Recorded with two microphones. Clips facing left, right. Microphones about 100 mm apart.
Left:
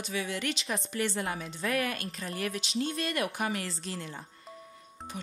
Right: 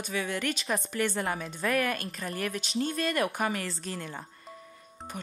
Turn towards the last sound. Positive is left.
turn(degrees=-50)  # may be behind; listen again after turning